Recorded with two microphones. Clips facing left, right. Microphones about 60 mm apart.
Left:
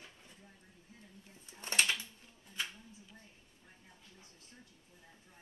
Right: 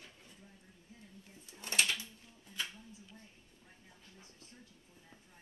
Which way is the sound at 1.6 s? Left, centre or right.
Left.